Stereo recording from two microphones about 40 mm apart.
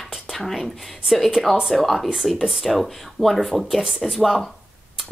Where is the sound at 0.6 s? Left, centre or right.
Centre.